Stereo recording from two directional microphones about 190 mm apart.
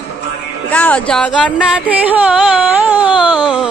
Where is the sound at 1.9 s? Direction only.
10° right (ahead or behind).